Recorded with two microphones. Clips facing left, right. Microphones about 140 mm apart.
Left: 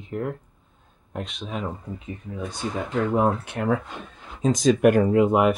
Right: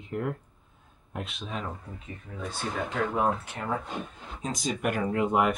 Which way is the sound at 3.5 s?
75° left (ahead or behind).